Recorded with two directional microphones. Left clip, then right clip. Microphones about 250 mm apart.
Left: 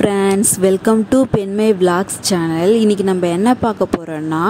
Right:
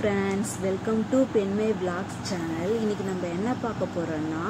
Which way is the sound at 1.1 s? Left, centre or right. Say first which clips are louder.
Left 9 dB; left.